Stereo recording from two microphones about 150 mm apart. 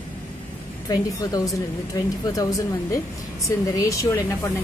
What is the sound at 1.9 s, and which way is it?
A woman's voice, 25° left (ahead or behind).